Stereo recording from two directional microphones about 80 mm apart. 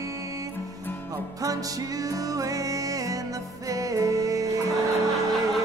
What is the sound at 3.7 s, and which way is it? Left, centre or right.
Music, right.